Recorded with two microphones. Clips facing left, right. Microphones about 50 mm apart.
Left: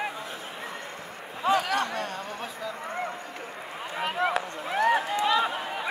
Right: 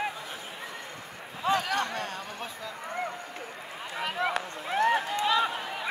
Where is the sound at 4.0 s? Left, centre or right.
Left.